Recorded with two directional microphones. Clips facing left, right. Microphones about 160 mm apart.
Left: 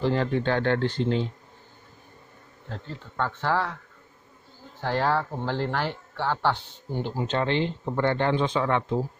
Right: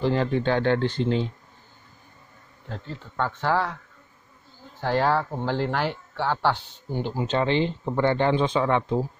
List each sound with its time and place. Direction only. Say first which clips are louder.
0.0 s speech: right 1 dB; 15° right (ahead or behind)
3.2 s speech: right 2 dB; 15° right (ahead or behind)
4.8 s speech: right 2 dB; 10° right (ahead or behind)